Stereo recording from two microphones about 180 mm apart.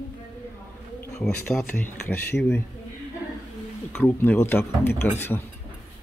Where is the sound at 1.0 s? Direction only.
5° left (ahead or behind).